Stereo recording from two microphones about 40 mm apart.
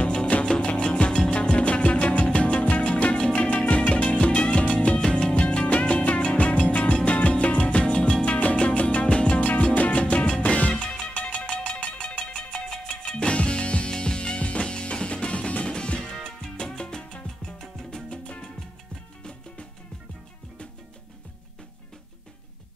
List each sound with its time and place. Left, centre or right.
0.0 s music: left
9.4 s music: left
16.3 s salsa music: left
17.9 s music: left